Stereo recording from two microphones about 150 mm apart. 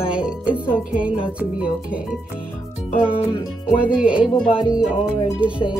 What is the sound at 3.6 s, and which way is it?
Speech, 5° right (ahead or behind).